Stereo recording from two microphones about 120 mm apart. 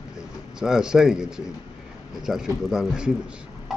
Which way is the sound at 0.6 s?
5° right (ahead or behind).